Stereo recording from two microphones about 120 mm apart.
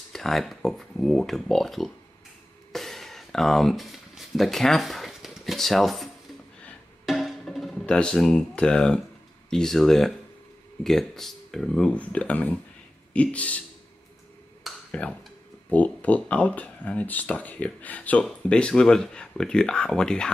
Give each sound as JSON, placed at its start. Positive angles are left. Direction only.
{"t": 0.1, "sound": "speech", "side_deg": 0}
{"t": 2.7, "sound": "a sound", "side_deg": 0}
{"t": 7.1, "sound": "music", "side_deg": 0}
{"t": 9.5, "sound": "speech", "side_deg": 5}
{"t": 14.9, "sound": "speech", "side_deg": 10}